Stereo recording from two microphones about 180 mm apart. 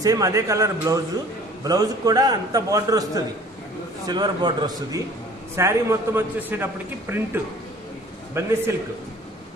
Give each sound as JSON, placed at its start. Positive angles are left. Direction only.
{"t": 0.0, "sound": "a man's voice", "side_deg": -20}